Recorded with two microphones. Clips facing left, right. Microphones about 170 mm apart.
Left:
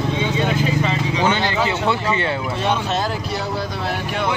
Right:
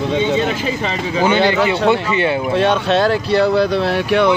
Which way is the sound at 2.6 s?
70° right (ahead or behind).